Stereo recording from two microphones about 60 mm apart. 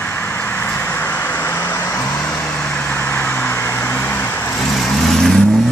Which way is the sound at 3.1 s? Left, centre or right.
Left.